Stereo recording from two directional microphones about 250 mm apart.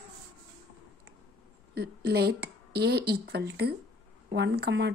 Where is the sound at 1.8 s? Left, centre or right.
Right.